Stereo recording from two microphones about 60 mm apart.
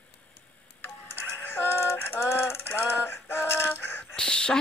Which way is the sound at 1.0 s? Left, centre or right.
Left.